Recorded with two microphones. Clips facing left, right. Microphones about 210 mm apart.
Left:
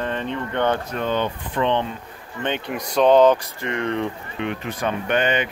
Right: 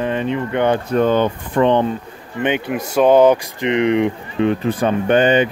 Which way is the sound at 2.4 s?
10° right (ahead or behind).